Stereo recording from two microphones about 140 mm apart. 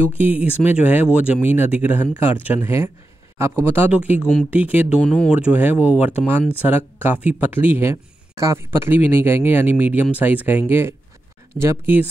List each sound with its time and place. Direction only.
0.2 s speech: 10° right (ahead or behind)
5.0 s speech: 5° left (ahead or behind)
5.3 s speech: 10° right (ahead or behind)